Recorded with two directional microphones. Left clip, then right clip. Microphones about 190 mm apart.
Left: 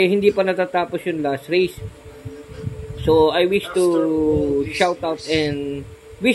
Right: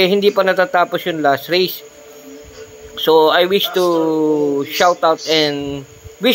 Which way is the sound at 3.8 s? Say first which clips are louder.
Right 1 dB; 15° right (ahead or behind).